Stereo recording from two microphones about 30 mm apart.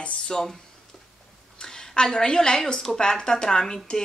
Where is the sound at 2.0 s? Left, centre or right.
Left.